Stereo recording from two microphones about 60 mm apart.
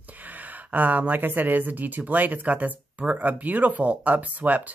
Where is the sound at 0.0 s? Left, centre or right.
Right.